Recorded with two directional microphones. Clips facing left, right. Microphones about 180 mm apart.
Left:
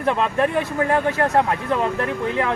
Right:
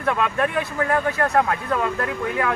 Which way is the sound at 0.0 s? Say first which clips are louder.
Left 2 dB; 30° left (ahead or behind).